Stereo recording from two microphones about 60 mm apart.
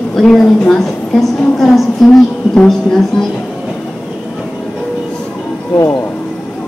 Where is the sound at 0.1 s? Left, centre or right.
Centre.